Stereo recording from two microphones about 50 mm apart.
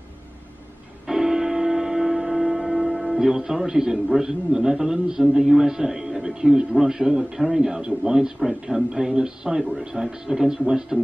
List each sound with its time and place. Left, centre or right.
1.0 s music: centre
3.1 s a man's voice: centre